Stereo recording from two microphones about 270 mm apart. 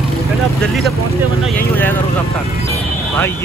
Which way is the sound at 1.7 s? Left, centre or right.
Centre.